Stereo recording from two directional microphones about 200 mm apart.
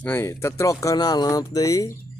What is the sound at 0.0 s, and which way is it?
Speech, 10° left (ahead or behind).